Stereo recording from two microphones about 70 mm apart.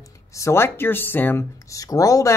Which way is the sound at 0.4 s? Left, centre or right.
Left.